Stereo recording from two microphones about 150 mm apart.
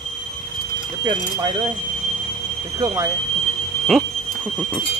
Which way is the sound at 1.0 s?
30° right (ahead or behind).